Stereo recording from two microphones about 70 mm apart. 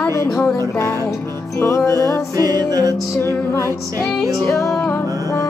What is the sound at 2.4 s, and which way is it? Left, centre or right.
Music, right.